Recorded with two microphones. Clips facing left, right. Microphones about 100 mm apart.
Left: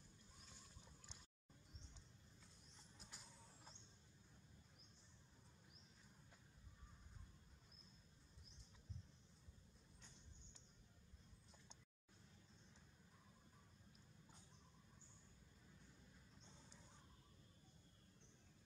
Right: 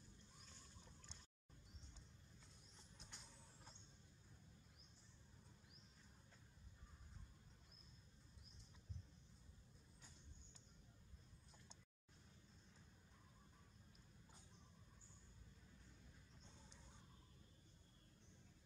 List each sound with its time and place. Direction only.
0.5 s boat: 10° left (ahead or behind)
3.0 s vehicle: centre (ahead or behind)